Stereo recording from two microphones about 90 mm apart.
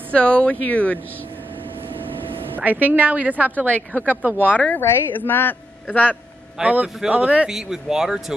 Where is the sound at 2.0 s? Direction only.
75° right (ahead or behind).